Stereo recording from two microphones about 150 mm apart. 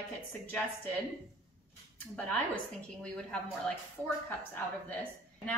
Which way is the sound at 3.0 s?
5° left (ahead or behind).